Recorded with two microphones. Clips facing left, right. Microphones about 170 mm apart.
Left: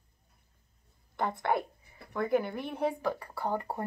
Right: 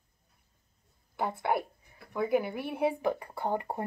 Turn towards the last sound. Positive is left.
turn(degrees=-20)  # may be behind; listen again after turning